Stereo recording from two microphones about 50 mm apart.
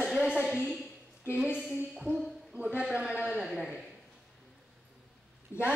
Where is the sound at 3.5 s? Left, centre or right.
Centre.